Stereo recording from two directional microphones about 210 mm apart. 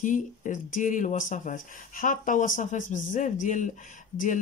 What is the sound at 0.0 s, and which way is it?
Speech, 35° left (ahead or behind).